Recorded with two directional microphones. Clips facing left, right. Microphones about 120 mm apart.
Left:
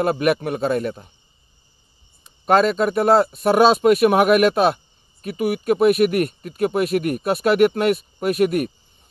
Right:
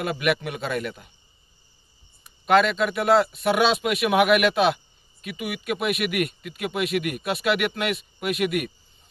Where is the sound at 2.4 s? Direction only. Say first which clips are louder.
Left 3 dB; 40° left (ahead or behind).